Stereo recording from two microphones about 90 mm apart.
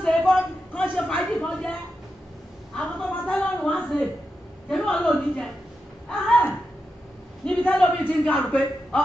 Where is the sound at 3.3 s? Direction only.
10° left (ahead or behind).